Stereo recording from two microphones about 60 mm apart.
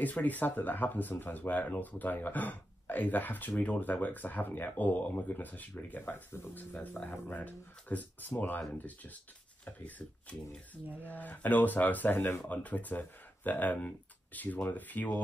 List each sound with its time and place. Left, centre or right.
0.0 s speech: left